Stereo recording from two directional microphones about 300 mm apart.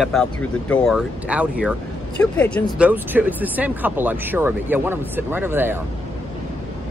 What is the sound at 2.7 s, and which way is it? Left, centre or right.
Speech, centre.